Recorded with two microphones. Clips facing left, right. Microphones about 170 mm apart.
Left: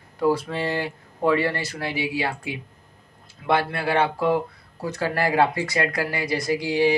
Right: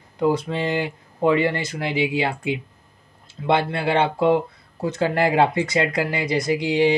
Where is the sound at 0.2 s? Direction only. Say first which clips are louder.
Right 1 dB; 20° right (ahead or behind).